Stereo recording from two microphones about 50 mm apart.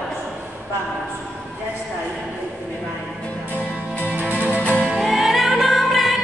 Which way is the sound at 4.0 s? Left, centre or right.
Right.